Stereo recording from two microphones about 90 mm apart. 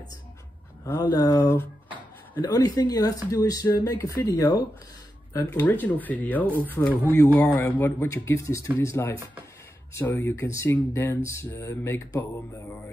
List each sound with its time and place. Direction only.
0.9 s speech: 50° left (ahead or behind)
5.4 s speech: 25° left (ahead or behind)
8.1 s speech: 35° left (ahead or behind)
9.9 s speech: 20° left (ahead or behind)
10.3 s speech: 30° left (ahead or behind)